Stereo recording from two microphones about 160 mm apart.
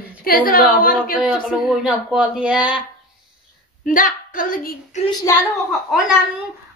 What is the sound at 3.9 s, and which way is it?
Speech, 55° left (ahead or behind).